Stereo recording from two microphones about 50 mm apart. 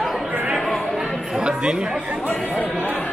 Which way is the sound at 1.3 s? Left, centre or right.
Centre.